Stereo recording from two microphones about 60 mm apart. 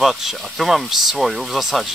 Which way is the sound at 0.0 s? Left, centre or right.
Centre.